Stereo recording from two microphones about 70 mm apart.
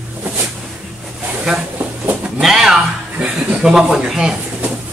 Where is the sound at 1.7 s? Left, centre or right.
Right.